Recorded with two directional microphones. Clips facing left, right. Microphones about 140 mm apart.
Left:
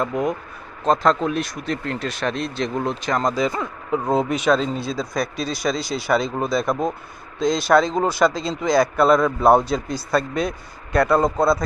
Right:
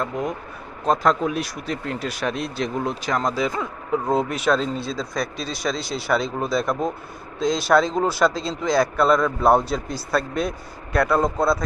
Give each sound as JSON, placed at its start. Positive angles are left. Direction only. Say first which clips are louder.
{"t": 0.8, "sound": "speech", "louder": "left 1 dB", "side_deg": -5}